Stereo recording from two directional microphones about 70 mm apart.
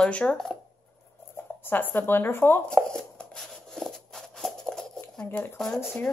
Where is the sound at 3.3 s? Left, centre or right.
Centre.